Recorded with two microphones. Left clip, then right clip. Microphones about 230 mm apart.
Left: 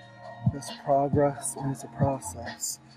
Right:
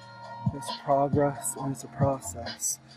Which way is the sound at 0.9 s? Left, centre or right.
Centre.